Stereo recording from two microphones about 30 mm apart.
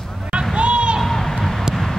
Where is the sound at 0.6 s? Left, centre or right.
Right.